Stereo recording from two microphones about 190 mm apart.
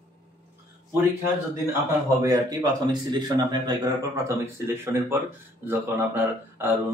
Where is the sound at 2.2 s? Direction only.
20° right (ahead or behind).